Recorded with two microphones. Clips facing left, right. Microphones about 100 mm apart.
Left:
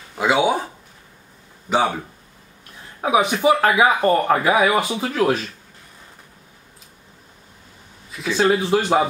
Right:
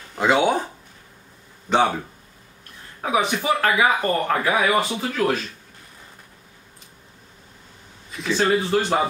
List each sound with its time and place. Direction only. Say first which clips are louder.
0.1 s speech: even; 5° left (ahead or behind)
1.7 s speech: even; centre (ahead or behind)
3.0 s a man's voice: left 4 dB; 10° left (ahead or behind)
8.1 s speech: left 2 dB; 5° left (ahead or behind)